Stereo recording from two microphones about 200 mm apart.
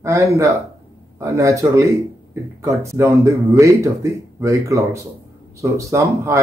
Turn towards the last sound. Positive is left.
turn(degrees=-15)  # may be behind; listen again after turning